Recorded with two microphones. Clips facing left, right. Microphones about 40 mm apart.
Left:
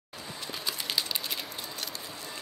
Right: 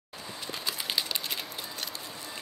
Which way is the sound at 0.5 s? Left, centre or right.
Centre.